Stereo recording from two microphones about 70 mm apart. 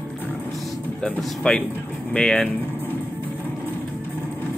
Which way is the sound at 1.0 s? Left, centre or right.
Centre.